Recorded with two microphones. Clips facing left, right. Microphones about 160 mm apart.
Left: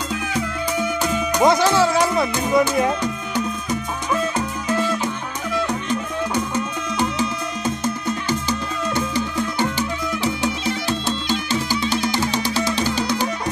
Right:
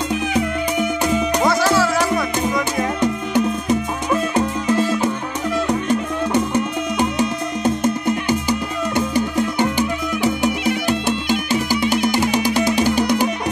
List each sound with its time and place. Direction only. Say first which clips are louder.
0.1 s music: right 5 dB; 20° right (ahead or behind)
1.4 s music: left 4 dB; 20° left (ahead or behind)
3.0 s music: right 6 dB; 25° right (ahead or behind)
7.8 s music: right 5 dB; 15° right (ahead or behind)